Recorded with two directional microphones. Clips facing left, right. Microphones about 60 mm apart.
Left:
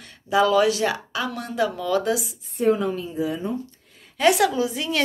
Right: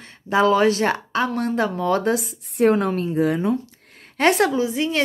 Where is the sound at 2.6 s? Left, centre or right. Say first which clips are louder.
Right 3 dB; right.